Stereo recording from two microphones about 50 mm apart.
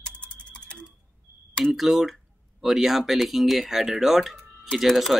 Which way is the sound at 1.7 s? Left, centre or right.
Centre.